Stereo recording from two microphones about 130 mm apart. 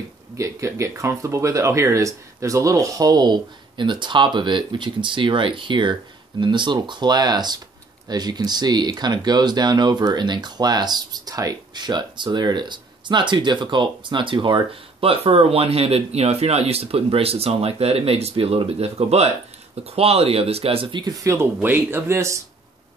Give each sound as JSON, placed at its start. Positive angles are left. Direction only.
{"t": 0.4, "sound": "speech", "side_deg": -25}
{"t": 21.2, "sound": "speech", "side_deg": -20}